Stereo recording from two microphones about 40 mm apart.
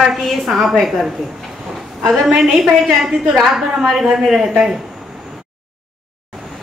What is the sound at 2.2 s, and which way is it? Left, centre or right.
A woman's voice, centre.